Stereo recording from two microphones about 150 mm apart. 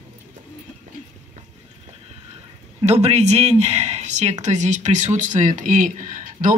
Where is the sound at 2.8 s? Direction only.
45° right (ahead or behind); by 6.5 s 60° right (ahead or behind).